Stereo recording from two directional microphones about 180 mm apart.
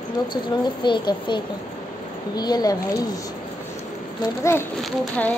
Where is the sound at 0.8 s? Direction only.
25° left (ahead or behind).